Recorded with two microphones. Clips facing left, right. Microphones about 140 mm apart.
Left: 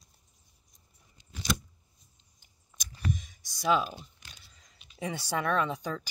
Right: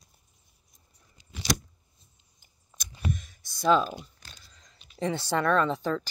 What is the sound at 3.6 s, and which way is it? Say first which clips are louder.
Speech: right 4 dB; 10° left (ahead or behind).